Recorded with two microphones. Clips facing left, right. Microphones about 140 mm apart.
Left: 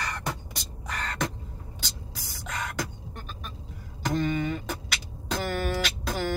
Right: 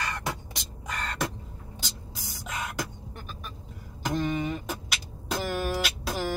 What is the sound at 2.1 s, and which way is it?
Spray, centre (ahead or behind).